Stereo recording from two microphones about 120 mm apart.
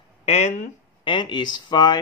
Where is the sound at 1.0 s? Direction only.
40° left (ahead or behind).